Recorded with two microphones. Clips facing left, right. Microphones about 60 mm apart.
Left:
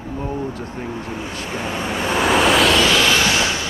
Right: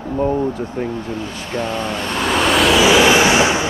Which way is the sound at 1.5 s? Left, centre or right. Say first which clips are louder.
Right 3 dB; centre.